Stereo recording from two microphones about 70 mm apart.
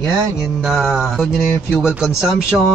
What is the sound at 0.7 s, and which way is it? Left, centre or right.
Speech, centre.